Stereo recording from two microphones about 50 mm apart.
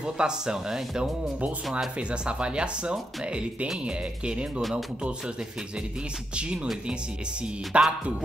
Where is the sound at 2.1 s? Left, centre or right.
Right.